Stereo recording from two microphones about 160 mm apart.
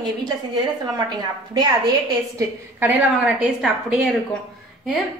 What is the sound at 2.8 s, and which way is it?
A woman's voice, 10° right (ahead or behind).